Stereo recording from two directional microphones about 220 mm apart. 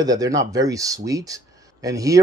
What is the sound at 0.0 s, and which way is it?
Speech, 15° right (ahead or behind).